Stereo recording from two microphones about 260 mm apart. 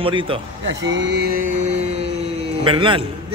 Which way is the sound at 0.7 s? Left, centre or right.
Right.